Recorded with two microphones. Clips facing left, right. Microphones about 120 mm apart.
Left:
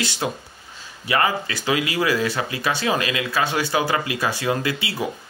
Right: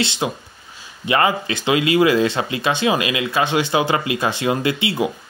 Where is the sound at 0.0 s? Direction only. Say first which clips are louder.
Right 3 dB; 20° right (ahead or behind).